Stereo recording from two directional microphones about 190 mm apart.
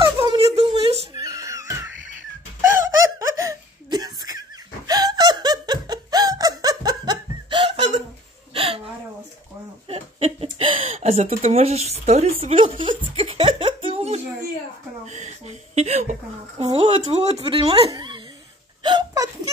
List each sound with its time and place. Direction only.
0.2 s a sound: 25° right (ahead or behind)
1.2 s music: 15° right (ahead or behind)
3.2 s laughter: 15° right (ahead or behind)
8.5 s hiccup: 30° right (ahead or behind)
9.8 s a sound: 30° right (ahead or behind)
18.8 s hiccup: 25° right (ahead or behind)